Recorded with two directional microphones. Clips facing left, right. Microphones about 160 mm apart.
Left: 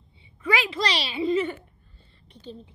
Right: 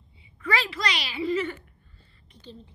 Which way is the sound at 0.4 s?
20° left (ahead or behind).